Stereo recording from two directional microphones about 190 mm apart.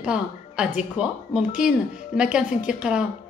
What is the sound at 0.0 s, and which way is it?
A woman's voice, 5° right (ahead or behind).